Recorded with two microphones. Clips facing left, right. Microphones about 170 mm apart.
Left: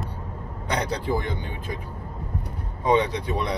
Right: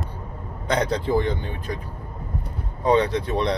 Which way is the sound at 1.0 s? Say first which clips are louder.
Right 5 dB; 10° left (ahead or behind).